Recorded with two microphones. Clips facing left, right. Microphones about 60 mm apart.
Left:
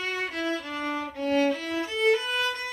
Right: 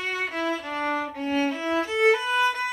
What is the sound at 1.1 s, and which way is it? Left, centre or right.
Music, centre.